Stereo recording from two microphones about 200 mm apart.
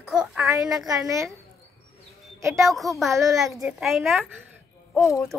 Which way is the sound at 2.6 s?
Centre (ahead or behind).